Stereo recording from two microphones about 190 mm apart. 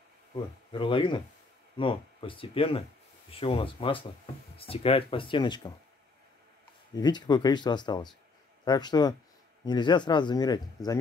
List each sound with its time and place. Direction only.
0.7 s speech: 25° left (ahead or behind)
7.0 s speech: 20° left (ahead or behind)